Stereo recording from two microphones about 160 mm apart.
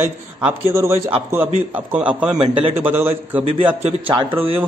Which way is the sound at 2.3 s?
30° right (ahead or behind).